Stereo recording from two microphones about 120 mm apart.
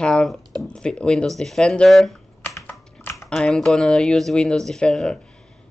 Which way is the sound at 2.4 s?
20° left (ahead or behind).